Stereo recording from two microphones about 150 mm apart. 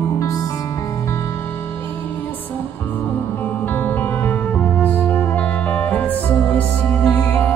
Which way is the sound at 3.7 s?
10° left (ahead or behind).